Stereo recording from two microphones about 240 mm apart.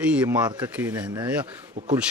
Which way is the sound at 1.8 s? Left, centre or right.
Right.